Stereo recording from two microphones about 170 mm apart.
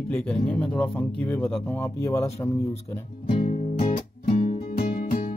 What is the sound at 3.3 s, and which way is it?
Music, 40° left (ahead or behind).